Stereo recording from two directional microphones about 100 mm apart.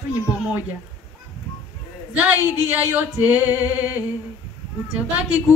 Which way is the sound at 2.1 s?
15° right (ahead or behind).